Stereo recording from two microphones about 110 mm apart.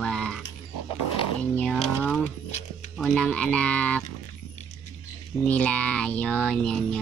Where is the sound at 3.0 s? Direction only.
10° left (ahead or behind).